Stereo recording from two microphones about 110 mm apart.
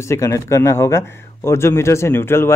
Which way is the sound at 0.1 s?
25° left (ahead or behind).